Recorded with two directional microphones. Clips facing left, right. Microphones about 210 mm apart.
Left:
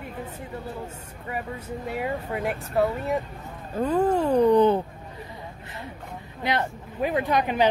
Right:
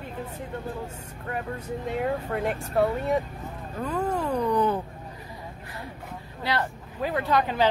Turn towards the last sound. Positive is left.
turn(degrees=15)  # may be behind; listen again after turning